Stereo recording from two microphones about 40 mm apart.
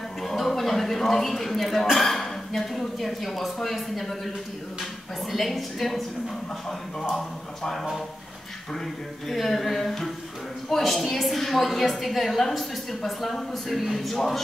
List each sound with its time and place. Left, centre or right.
0.2 s a sound: centre
2.0 s speech: centre
5.3 s a woman's voice: centre
9.3 s a woman's voice: centre